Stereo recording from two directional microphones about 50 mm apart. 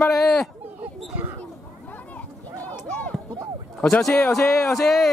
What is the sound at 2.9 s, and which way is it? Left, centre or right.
Run, left.